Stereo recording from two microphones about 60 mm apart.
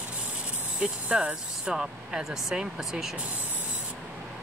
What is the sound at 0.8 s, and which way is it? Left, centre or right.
Speech, centre.